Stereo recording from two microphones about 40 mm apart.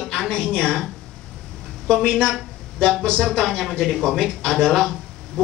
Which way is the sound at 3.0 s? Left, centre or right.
Centre.